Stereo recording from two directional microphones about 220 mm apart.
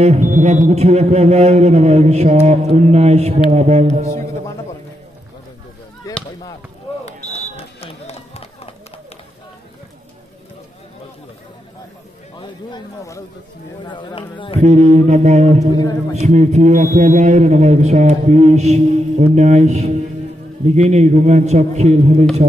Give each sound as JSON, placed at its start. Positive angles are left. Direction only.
{"t": 0.0, "sound": "speech", "side_deg": -30}
{"t": 6.0, "sound": "chop", "side_deg": 15}
{"t": 7.1, "sound": "run", "side_deg": 30}
{"t": 12.4, "sound": "a sound", "side_deg": 15}
{"t": 13.8, "sound": "speech", "side_deg": 20}
{"t": 14.6, "sound": "a man's voice", "side_deg": -30}